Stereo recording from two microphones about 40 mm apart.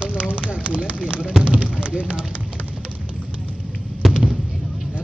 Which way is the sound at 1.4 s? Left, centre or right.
Right.